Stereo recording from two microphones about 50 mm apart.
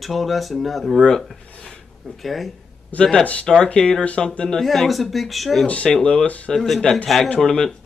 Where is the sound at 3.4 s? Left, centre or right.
Centre.